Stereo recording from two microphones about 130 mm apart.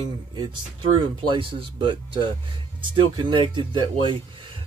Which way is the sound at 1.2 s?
40° right (ahead or behind).